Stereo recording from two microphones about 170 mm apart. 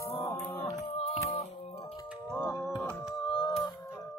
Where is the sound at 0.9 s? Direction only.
40° left (ahead or behind).